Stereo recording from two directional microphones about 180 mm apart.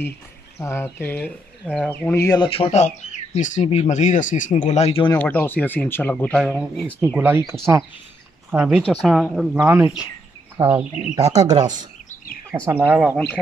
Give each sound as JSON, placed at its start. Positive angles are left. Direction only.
{"t": 0.6, "sound": "speech", "side_deg": 15}
{"t": 2.2, "sound": "speech", "side_deg": 25}
{"t": 5.2, "sound": "speech", "side_deg": 10}
{"t": 7.0, "sound": "speech", "side_deg": -10}